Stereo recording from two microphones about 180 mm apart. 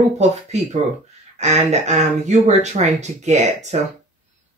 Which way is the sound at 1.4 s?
40° right (ahead or behind).